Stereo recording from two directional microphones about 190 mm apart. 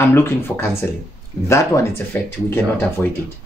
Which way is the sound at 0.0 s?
10° left (ahead or behind).